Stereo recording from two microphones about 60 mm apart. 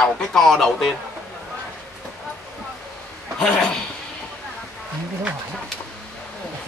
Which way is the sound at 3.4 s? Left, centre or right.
Centre.